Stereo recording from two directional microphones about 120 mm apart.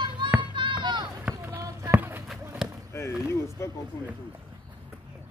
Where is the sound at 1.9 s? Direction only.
15° right (ahead or behind).